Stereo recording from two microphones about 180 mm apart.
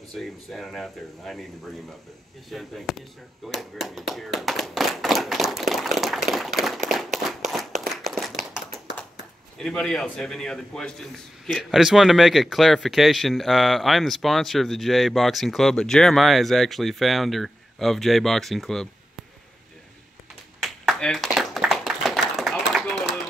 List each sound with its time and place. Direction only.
0.1 s a man's voice: centre (ahead or behind)
2.5 s a man's voice: centre (ahead or behind)
7.2 s a sound: centre (ahead or behind)
7.8 s clapping: centre (ahead or behind)
9.6 s a man's voice: 5° left (ahead or behind)
20.6 s clapping: centre (ahead or behind)